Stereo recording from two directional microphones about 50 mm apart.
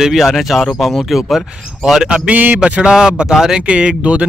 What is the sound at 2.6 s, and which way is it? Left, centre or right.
Speech, right.